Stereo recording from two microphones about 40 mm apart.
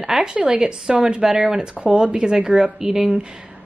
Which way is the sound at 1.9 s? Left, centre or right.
Right.